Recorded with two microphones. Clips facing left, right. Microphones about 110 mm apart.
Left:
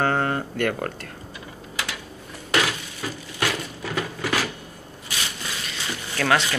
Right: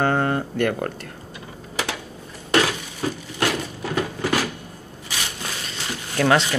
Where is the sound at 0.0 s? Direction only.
15° right (ahead or behind).